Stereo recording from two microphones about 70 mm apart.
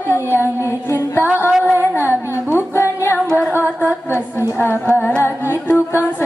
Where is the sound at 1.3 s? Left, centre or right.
Right.